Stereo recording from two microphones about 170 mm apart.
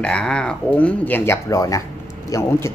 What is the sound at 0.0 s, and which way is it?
A man's voice, 5° left (ahead or behind).